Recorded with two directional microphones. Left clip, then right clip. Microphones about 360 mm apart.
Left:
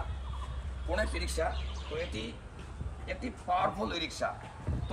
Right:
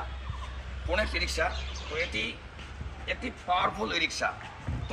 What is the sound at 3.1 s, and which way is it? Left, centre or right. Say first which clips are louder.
Speech: right 2 dB; centre.